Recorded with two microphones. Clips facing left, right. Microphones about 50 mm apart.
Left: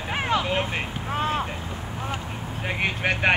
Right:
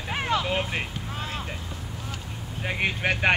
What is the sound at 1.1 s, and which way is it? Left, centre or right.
Speech, left.